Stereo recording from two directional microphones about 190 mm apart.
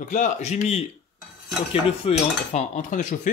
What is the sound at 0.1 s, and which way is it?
Speech, 40° left (ahead or behind).